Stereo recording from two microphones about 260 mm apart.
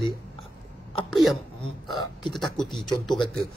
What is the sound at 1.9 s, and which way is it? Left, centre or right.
Speech, centre.